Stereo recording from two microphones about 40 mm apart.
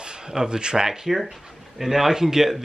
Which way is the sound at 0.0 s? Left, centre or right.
Centre.